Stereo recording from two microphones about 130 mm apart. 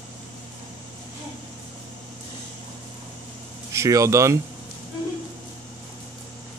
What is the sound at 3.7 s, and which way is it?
Speech, 25° right (ahead or behind).